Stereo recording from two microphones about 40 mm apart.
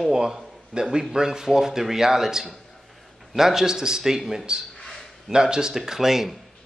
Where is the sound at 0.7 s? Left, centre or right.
Right.